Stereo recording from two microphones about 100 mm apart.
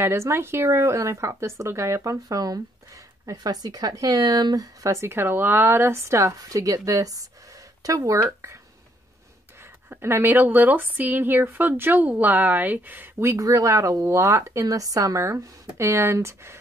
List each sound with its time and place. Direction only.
0.0 s speech: 25° right (ahead or behind); by 4.6 s 40° right (ahead or behind)
4.8 s speech: 25° right (ahead or behind)
9.8 s speech: 25° right (ahead or behind)